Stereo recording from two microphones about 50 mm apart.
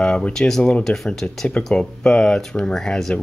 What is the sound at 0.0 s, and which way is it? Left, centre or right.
Speech, centre.